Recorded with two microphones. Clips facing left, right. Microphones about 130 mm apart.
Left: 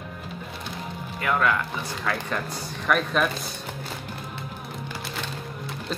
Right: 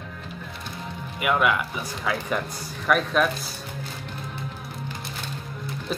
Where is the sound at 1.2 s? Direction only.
15° right (ahead or behind).